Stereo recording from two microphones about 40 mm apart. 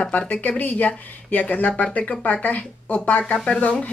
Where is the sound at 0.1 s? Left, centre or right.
Left.